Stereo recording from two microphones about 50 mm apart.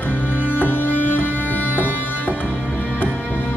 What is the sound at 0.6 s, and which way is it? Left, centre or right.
Music, left.